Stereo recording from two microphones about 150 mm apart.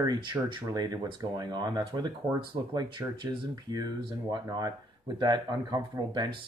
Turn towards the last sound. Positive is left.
turn(degrees=-25)  # may be behind; listen again after turning